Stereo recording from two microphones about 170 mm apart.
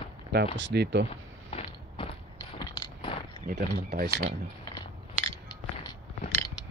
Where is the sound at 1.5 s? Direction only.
35° left (ahead or behind).